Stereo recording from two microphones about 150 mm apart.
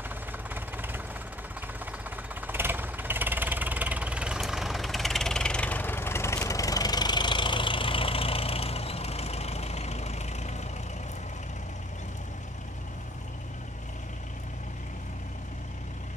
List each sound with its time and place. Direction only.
0.1 s vehicle: 15° right (ahead or behind); by 10.5 s 50° left (ahead or behind)